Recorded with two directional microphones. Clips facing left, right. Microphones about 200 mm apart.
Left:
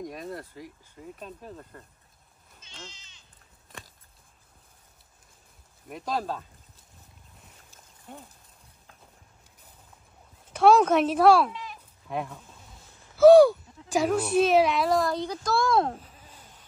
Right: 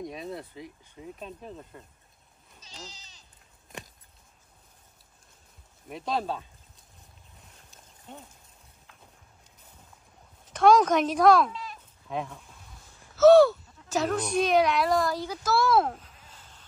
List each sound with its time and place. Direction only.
0.0 s speech: centre (ahead or behind)
2.6 s speech: 35° right (ahead or behind)
5.9 s speech: centre (ahead or behind)
7.7 s horse: centre (ahead or behind)
10.5 s speech: 5° left (ahead or behind)
16.0 s a sound: 10° left (ahead or behind)